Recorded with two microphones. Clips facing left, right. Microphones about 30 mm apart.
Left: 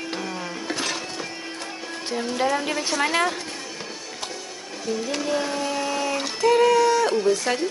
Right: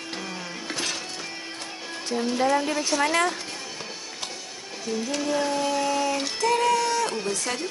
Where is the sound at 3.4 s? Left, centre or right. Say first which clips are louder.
Left 2 dB; centre.